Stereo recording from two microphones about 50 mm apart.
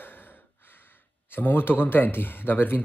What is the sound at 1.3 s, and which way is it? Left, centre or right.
Speech, left.